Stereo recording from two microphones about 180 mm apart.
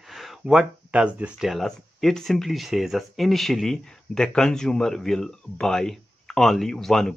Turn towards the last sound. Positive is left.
turn(degrees=0)  # may be behind; listen again after turning